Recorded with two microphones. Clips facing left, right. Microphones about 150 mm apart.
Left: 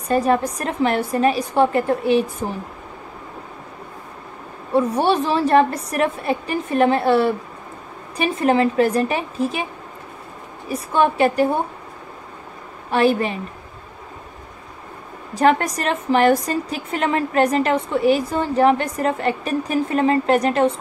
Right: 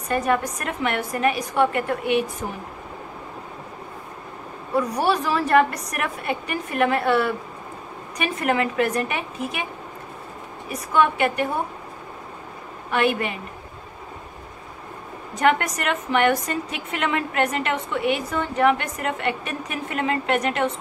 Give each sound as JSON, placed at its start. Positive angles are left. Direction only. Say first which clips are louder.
{"t": 0.1, "sound": "a woman's voice", "louder": "left 4 dB", "side_deg": 30}
{"t": 4.7, "sound": "a woman's voice", "louder": "left 4 dB", "side_deg": 25}
{"t": 10.7, "sound": "a woman's voice", "louder": "left 2 dB", "side_deg": 30}
{"t": 12.9, "sound": "a woman's voice", "louder": "left 5 dB", "side_deg": 35}
{"t": 15.3, "sound": "a woman's voice", "louder": "left 4 dB", "side_deg": 35}